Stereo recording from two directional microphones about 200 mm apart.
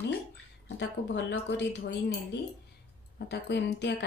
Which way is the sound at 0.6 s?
60° left (ahead or behind).